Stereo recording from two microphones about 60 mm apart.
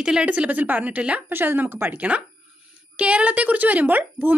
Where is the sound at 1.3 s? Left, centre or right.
Right.